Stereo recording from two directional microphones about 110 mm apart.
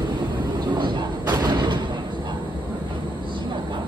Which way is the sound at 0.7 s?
45° right (ahead or behind).